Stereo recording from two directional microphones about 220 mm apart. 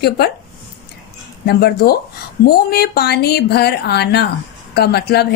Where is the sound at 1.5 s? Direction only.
45° left (ahead or behind).